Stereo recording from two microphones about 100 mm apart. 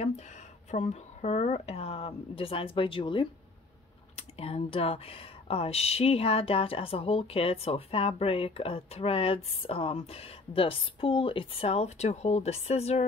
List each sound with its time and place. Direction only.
0.7 s speech: 90° left; by 3.3 s 55° left (ahead or behind)
4.2 s speech: 75° left (ahead or behind)